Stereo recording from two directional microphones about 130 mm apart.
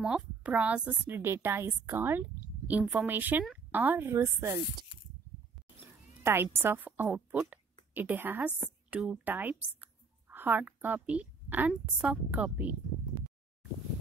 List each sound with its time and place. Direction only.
0.0 s a woman's voice: 5° right (ahead or behind); by 4.6 s 20° right (ahead or behind)
6.2 s a woman's voice: 20° right (ahead or behind)